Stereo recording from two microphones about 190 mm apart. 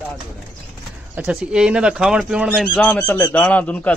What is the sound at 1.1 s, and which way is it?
Speech, 5° right (ahead or behind).